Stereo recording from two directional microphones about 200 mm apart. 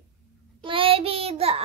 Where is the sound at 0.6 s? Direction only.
25° right (ahead or behind).